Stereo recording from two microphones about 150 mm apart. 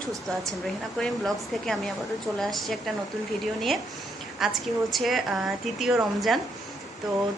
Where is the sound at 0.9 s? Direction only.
5° left (ahead or behind).